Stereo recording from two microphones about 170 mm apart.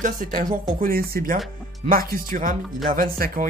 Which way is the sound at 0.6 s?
60° right (ahead or behind).